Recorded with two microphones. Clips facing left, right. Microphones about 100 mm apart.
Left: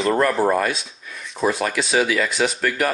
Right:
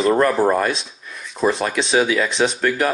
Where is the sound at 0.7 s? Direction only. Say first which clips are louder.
Right 3 dB; centre (ahead or behind).